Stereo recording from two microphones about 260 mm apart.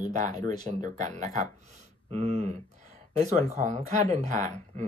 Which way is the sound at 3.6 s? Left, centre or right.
Right.